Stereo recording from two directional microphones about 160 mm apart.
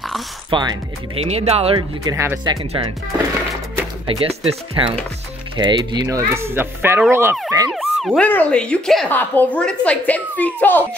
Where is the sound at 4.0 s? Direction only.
35° right (ahead or behind); by 7.3 s 15° right (ahead or behind).